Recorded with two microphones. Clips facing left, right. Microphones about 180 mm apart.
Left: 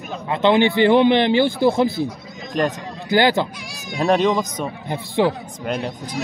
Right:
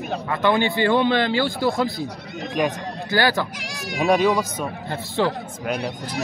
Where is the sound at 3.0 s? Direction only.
20° left (ahead or behind).